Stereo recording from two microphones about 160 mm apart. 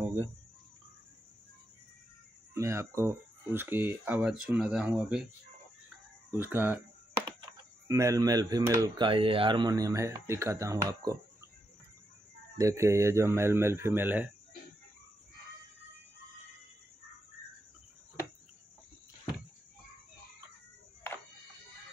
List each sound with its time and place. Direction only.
2.5 s speech: 20° right (ahead or behind)
6.3 s speech: 10° right (ahead or behind)
7.9 s speech: 20° right (ahead or behind)
12.5 s speech: 20° right (ahead or behind)